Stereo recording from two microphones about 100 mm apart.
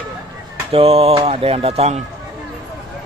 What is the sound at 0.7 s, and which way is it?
Speech, 75° right (ahead or behind).